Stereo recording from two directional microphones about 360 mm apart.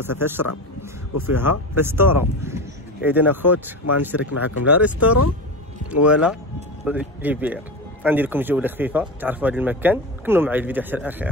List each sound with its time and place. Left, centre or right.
0.0 s speech: centre